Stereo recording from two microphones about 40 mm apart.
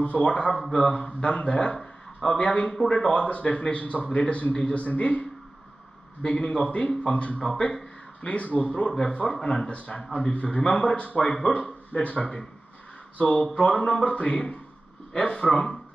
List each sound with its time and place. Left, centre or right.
0.0 s a man's voice: left
0.3 s a man's voice: left
2.2 s a man's voice: left
6.2 s a man's voice: left
8.2 s a man's voice: left
9.3 s a man's voice: centre
9.7 s a man's voice: left